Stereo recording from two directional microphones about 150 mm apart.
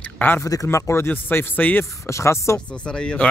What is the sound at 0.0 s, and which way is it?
Speech, 15° left (ahead or behind).